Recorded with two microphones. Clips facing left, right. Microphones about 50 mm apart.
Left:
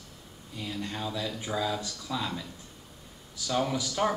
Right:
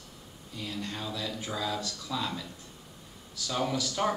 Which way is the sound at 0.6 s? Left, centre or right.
Centre.